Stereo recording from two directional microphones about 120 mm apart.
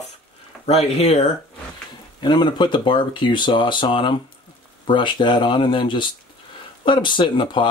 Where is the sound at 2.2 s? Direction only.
40° left (ahead or behind).